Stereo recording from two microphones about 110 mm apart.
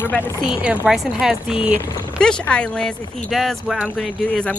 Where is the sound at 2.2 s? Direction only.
10° left (ahead or behind).